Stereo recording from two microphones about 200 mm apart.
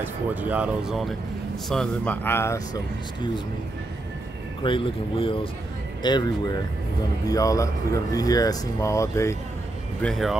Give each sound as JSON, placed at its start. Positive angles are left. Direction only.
{"t": 0.0, "sound": "speech", "side_deg": -10}
{"t": 4.6, "sound": "speech", "side_deg": 25}
{"t": 10.0, "sound": "speech", "side_deg": 0}